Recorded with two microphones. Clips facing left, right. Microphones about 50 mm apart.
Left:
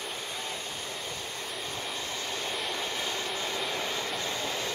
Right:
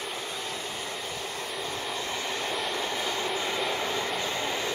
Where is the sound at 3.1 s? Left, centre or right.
Right.